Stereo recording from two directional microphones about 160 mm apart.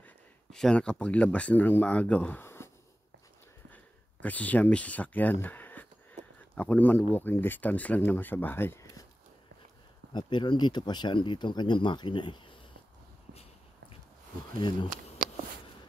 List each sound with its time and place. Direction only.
0.0 s speech: 5° left (ahead or behind)
3.7 s speech: 10° left (ahead or behind)
10.1 s speech: 30° left (ahead or behind)
13.3 s a sound: 40° left (ahead or behind)